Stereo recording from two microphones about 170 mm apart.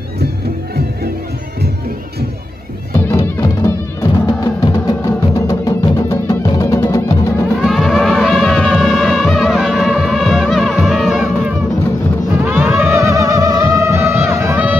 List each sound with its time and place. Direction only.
3.2 s music: 25° left (ahead or behind)
7.6 s music: centre (ahead or behind)